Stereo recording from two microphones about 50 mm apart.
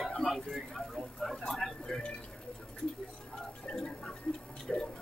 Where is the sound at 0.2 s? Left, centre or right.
Centre.